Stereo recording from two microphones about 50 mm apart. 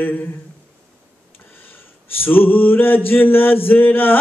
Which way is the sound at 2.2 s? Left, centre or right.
Left.